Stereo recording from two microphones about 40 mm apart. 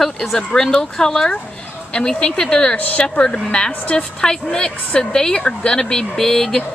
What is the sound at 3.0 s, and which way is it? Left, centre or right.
A woman's voice, left.